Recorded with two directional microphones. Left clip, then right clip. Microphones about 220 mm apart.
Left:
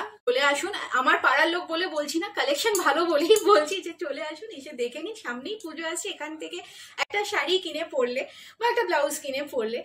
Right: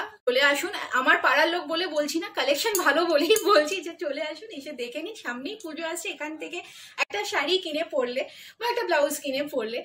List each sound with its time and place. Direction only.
0.3 s speech: centre (ahead or behind)